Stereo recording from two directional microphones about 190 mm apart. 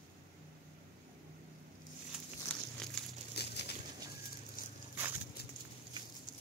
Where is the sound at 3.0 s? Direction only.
5° left (ahead or behind).